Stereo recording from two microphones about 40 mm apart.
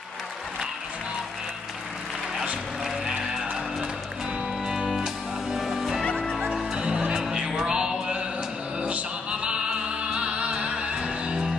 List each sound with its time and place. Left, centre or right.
4.6 s music: centre